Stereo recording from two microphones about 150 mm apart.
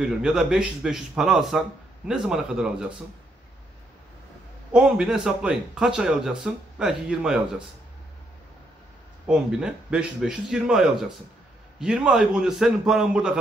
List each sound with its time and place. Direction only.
0.0 s speech: 5° right (ahead or behind)
4.7 s speech: 5° right (ahead or behind)
9.3 s speech: 5° right (ahead or behind)